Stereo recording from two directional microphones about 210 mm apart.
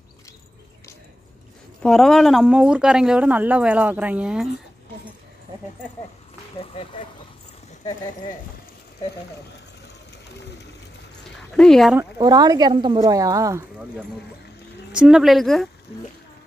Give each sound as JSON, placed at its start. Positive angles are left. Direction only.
{"t": 1.8, "sound": "a woman's voice", "side_deg": 0}
{"t": 6.5, "sound": "speech", "side_deg": 25}
{"t": 11.5, "sound": "a woman's voice", "side_deg": 5}
{"t": 12.0, "sound": "speech", "side_deg": -20}
{"t": 14.9, "sound": "a woman's voice", "side_deg": -5}